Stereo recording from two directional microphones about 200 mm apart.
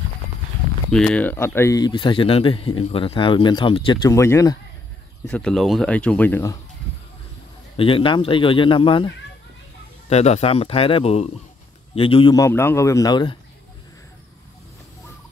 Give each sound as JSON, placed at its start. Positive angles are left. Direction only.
{"t": 0.9, "sound": "speech", "side_deg": 5}
{"t": 5.2, "sound": "speech", "side_deg": 5}
{"t": 7.7, "sound": "speech", "side_deg": 25}